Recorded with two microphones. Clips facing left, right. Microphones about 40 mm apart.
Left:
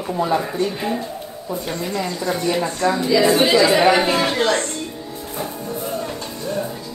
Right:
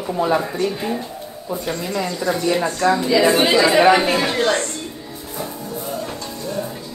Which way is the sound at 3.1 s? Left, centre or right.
Right.